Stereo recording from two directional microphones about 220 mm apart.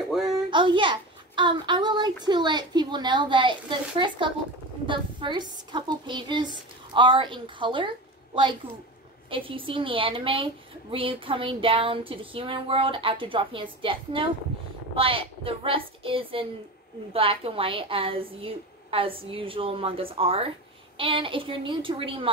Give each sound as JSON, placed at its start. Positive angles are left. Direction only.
{"t": 0.5, "sound": "a woman's voice", "side_deg": -20}
{"t": 9.3, "sound": "a woman's voice", "side_deg": -25}